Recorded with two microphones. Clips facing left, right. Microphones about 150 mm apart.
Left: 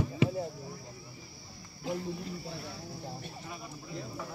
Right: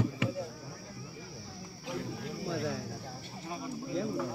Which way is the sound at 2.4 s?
90° right.